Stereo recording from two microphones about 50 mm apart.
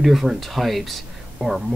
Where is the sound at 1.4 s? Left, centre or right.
Centre.